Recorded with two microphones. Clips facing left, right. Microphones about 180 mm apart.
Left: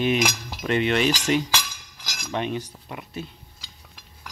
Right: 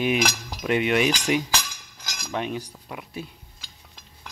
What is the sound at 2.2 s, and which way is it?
Cutlery, 5° right (ahead or behind).